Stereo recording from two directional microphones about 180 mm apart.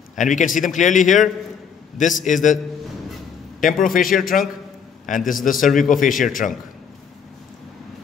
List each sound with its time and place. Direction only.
0.1 s a man's voice: 45° left (ahead or behind)
3.6 s a man's voice: 50° left (ahead or behind)